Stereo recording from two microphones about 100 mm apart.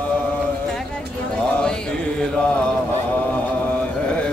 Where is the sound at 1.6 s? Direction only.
10° left (ahead or behind).